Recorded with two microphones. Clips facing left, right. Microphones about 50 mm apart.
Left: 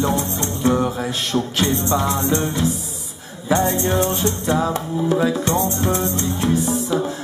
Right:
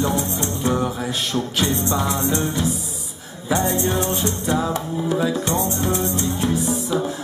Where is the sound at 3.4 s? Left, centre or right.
Left.